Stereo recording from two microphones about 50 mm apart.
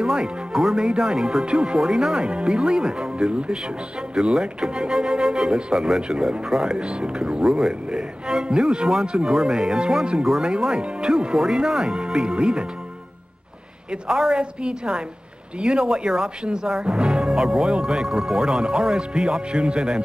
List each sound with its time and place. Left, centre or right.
0.0 s speech: centre
14.0 s speech: centre